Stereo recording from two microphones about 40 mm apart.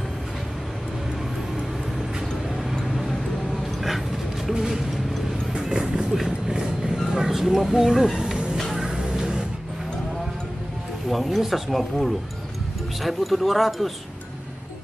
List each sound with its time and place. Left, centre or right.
4.6 s mechanisms: centre
5.5 s music: centre
6.1 s vehicle: centre
7.2 s speech: centre
8.7 s music: centre
11.1 s speech: centre